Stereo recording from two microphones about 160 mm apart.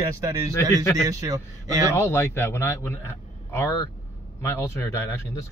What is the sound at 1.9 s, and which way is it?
A man's voice, 15° left (ahead or behind).